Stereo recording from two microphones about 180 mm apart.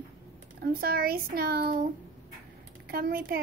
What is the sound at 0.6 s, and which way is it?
A woman's voice, 55° right (ahead or behind).